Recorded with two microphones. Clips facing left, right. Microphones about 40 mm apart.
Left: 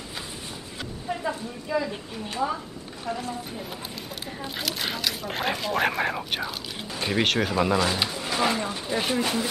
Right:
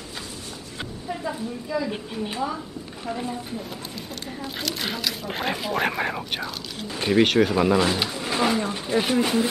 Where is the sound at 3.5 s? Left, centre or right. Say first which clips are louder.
Right 2 dB; centre.